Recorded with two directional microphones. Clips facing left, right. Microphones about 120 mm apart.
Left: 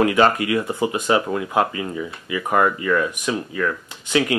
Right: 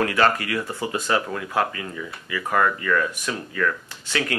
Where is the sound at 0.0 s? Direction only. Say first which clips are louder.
Left 4 dB; 20° left (ahead or behind).